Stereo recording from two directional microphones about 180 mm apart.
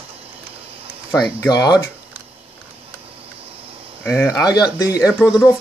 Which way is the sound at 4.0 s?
10° left (ahead or behind).